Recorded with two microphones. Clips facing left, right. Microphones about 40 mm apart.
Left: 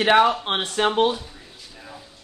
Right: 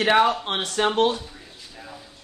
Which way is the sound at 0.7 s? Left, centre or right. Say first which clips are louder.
Even; centre.